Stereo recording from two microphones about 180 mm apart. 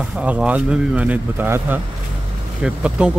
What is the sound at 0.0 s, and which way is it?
Speech, 5° right (ahead or behind).